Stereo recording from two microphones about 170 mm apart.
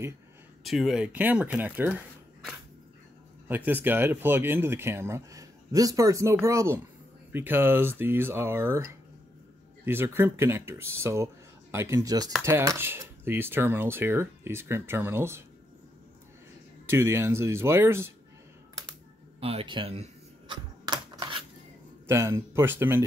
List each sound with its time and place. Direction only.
0.7 s speech: centre (ahead or behind)
3.4 s speech: 10° right (ahead or behind)
9.8 s speech: 15° right (ahead or behind)
16.8 s speech: 15° right (ahead or behind)
19.4 s speech: 30° right (ahead or behind)
20.8 s a sound: 25° right (ahead or behind)
22.0 s speech: 15° right (ahead or behind)